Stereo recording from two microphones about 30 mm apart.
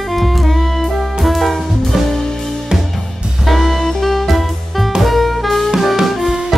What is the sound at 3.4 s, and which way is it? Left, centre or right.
Music, centre.